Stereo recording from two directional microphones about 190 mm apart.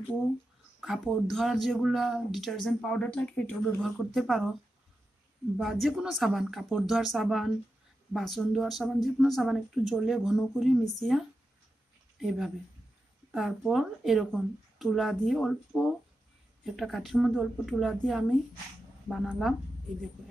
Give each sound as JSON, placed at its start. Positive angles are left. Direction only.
{"t": 0.7, "sound": "speech", "side_deg": 0}
{"t": 5.6, "sound": "speech", "side_deg": 0}